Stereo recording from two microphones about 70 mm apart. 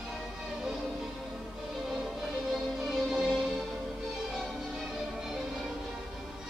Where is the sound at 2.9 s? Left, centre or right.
Centre.